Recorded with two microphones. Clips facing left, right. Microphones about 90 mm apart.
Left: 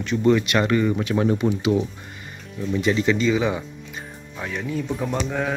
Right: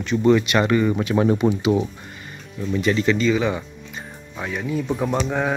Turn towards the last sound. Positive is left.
turn(degrees=-20)  # may be behind; listen again after turning